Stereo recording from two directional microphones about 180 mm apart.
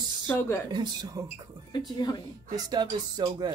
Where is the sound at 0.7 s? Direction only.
20° right (ahead or behind).